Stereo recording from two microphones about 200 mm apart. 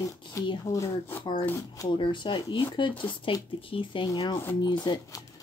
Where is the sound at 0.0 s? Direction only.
20° left (ahead or behind).